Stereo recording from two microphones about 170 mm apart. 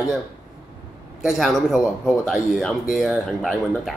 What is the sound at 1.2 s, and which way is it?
Speech, centre (ahead or behind).